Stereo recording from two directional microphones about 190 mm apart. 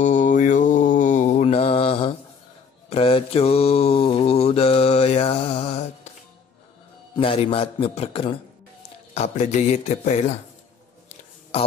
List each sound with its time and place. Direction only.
0.0 s mantra: 40° left (ahead or behind)
7.2 s a man's voice: 30° left (ahead or behind)